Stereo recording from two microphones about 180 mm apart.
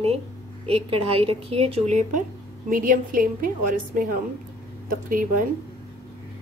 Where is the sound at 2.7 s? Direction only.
50° right (ahead or behind).